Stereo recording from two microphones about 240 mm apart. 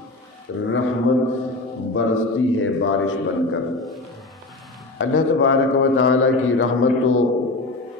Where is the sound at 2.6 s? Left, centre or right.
Left.